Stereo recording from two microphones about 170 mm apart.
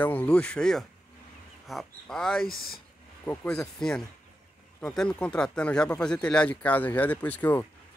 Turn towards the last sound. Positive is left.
turn(degrees=10)  # may be behind; listen again after turning